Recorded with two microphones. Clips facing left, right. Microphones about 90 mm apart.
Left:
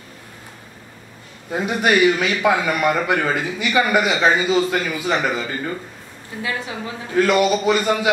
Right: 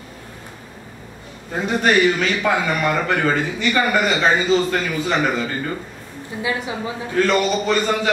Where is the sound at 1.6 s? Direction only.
10° left (ahead or behind).